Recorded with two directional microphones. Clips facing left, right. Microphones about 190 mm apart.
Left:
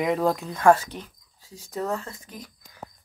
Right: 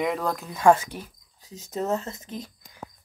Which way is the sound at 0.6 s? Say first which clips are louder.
Even; 15° right (ahead or behind).